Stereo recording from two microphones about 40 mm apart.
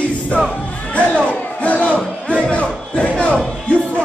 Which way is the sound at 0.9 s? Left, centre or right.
Left.